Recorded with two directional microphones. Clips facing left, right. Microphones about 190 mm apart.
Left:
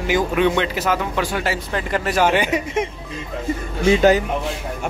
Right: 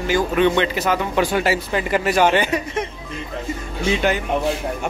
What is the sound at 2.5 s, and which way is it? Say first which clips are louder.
Speech: left 2 dB; 20° left (ahead or behind).